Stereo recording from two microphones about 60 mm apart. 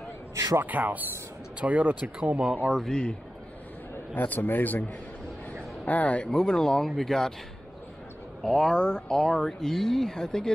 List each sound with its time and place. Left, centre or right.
0.3 s a sound: right
0.7 s speech: right
2.7 s speech: centre
4.1 s a man's voice: left
5.9 s a man's voice: left
6.2 s speech: centre
8.4 s speech: centre